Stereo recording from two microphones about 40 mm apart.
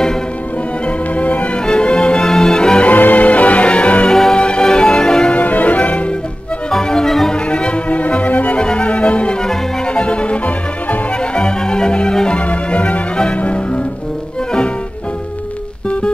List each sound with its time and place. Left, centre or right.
1.1 s music: left
1.7 s music: left
2.2 s music: centre
2.8 s music: left
4.1 s music: centre
4.4 s music: left
5.3 s music: left
6.7 s music: centre; by 8.5 s left
8.5 s music: left
9.4 s music: centre
11.3 s music: left
12.4 s music: left